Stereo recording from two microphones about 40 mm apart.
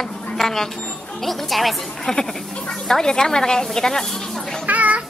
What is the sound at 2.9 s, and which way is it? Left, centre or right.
A woman's voice, centre.